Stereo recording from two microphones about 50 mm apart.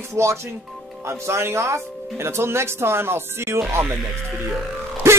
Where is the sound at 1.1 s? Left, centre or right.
Right.